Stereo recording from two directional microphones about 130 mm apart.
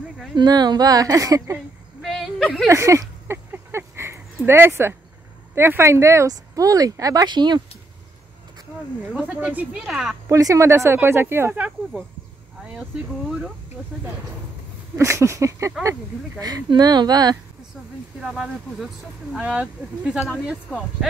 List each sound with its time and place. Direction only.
0.4 s speech: 35° right (ahead or behind)
2.0 s a sound: centre (ahead or behind)
2.7 s a sound: 25° right (ahead or behind)
5.5 s speech: 20° right (ahead or behind); by 7.6 s 35° right (ahead or behind)
9.2 s speech: 10° right (ahead or behind)
10.2 s speech: 25° right (ahead or behind)
15.0 s speech: 20° right (ahead or behind)
18.2 s speech: centre (ahead or behind)